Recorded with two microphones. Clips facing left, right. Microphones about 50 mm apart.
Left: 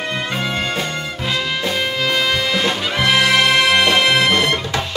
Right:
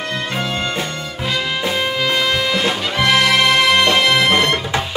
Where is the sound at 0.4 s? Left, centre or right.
Centre.